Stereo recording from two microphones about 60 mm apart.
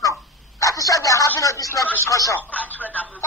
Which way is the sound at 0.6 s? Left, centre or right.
Left.